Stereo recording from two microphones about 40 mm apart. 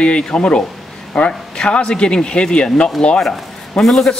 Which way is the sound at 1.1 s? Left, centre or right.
Centre.